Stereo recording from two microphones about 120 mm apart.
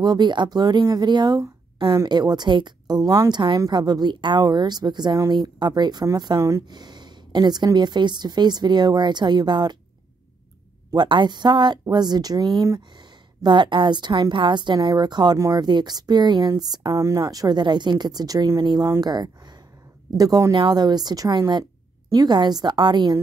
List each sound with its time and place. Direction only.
0.0 s a woman's voice: 35° right (ahead or behind)
11.0 s a woman's voice: 40° right (ahead or behind)